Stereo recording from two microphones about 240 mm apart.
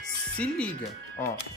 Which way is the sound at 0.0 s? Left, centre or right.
Centre.